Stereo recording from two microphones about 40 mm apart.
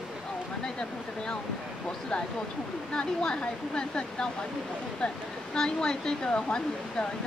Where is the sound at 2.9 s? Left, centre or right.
Left.